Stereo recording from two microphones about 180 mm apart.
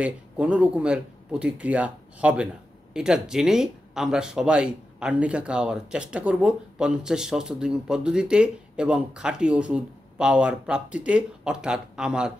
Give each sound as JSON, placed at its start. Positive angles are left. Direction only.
{"t": 0.0, "sound": "speech", "side_deg": -5}